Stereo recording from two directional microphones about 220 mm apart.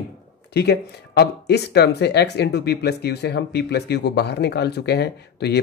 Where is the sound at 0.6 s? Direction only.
50° left (ahead or behind).